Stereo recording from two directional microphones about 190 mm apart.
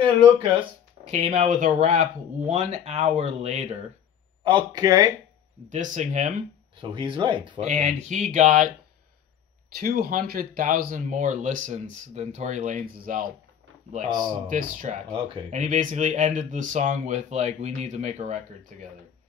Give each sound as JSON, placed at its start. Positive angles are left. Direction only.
{"t": 0.0, "sound": "speech", "side_deg": -30}
{"t": 4.4, "sound": "speech", "side_deg": -25}
{"t": 5.7, "sound": "speech", "side_deg": -40}
{"t": 6.8, "sound": "speech", "side_deg": -25}
{"t": 7.6, "sound": "speech", "side_deg": -40}
{"t": 9.8, "sound": "speech", "side_deg": -50}
{"t": 14.5, "sound": "speech", "side_deg": -45}
{"t": 15.2, "sound": "speech", "side_deg": -30}
{"t": 15.6, "sound": "speech", "side_deg": -40}